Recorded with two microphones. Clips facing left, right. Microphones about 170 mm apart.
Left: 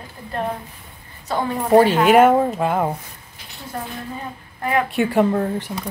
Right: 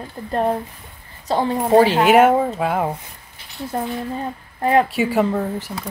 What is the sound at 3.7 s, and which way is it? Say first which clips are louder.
A woman's voice: right 5 dB; 25° right (ahead or behind).